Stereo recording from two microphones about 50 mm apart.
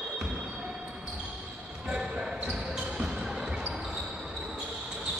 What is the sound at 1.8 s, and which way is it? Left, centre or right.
Basketball bounce, right.